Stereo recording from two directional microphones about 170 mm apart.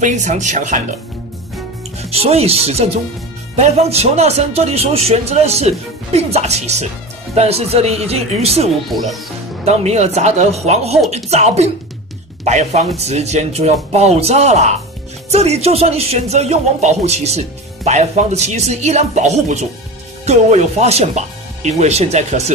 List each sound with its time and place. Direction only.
0.0 s speech: 45° right (ahead or behind)
2.0 s speech: 35° right (ahead or behind)
9.7 s speech: 40° right (ahead or behind)